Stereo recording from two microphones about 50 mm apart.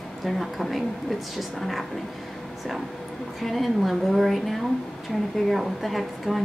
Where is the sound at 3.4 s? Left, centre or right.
Centre.